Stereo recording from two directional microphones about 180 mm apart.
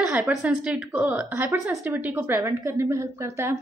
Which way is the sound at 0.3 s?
5° right (ahead or behind).